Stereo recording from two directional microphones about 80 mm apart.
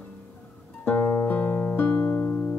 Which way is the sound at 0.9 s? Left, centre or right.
Left.